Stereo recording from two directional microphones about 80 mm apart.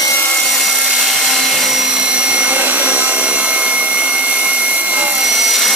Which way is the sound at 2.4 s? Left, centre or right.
Centre.